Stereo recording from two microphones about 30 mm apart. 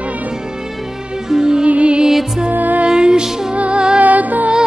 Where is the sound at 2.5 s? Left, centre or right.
Right.